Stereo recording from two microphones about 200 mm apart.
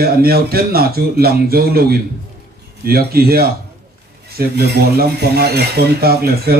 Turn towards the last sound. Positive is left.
turn(degrees=-50)  # may be behind; listen again after turning